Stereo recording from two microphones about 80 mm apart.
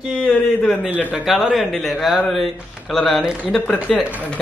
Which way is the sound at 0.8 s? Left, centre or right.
Right.